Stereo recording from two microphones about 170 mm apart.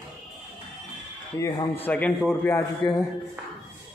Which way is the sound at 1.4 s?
15° left (ahead or behind).